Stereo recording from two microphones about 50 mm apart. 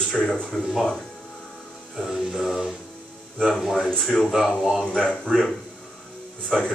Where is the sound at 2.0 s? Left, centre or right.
Centre.